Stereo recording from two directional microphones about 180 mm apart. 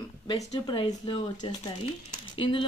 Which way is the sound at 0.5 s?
25° left (ahead or behind).